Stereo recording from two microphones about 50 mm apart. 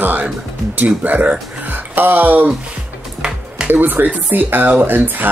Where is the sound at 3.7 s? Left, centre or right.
Right.